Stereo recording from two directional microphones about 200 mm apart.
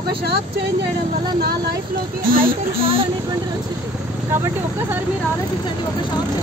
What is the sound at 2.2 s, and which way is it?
Speech, 45° right (ahead or behind).